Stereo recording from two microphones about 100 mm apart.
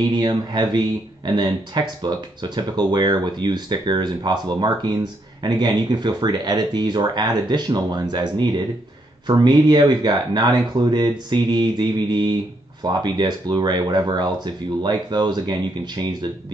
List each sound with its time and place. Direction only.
0.1 s speech: 45° right (ahead or behind)